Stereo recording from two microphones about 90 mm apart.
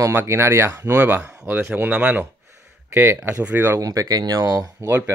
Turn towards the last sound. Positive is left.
turn(degrees=-25)  # may be behind; listen again after turning